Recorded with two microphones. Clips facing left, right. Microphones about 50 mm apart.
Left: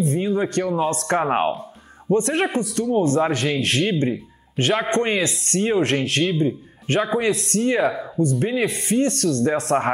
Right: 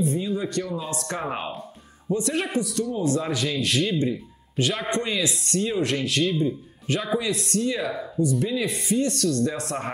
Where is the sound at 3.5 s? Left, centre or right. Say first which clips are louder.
Left 3 dB; left.